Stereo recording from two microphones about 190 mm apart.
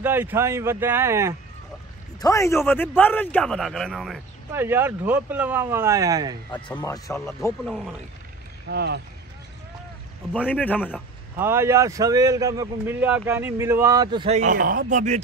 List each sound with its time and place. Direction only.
0.0 s a man's voice: 10° right (ahead or behind)
2.1 s a man's voice: 15° left (ahead or behind); by 4.2 s centre (ahead or behind)
4.5 s a man's voice: 10° right (ahead or behind)
6.7 s speech: 15° left (ahead or behind)
7.6 s a man's voice: 5° right (ahead or behind)
8.6 s speech: 60° right (ahead or behind)
10.3 s speech: 5° left (ahead or behind)
11.3 s a man's voice: 10° right (ahead or behind)
14.4 s a man's voice: 45° right (ahead or behind)